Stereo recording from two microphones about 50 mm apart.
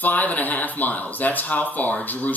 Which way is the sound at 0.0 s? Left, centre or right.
Left.